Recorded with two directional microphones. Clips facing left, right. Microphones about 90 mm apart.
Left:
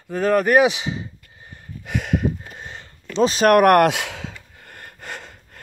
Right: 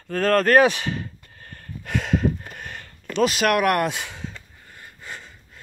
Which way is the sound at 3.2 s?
35° left (ahead or behind).